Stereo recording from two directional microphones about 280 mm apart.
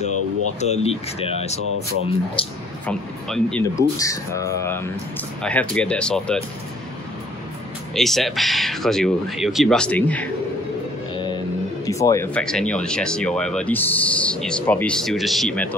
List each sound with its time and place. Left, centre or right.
0.6 s speech: left
2.9 s speech: centre
7.9 s speech: centre
11.8 s speech: centre